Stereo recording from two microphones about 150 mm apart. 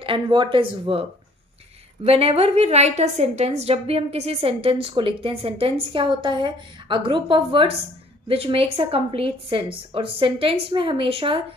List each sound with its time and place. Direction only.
0.0 s a woman's voice: 35° right (ahead or behind)
2.0 s a woman's voice: 40° right (ahead or behind)